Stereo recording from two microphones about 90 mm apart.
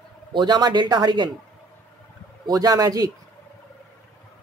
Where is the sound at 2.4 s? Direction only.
45° right (ahead or behind).